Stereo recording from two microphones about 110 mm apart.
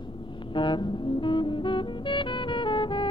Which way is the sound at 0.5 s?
45° left (ahead or behind).